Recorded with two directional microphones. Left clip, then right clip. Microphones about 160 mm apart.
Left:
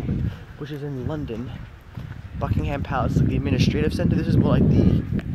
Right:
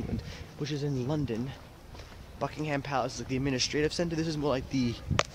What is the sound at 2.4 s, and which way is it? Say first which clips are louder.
Speech: left 4 dB; 5° left (ahead or behind).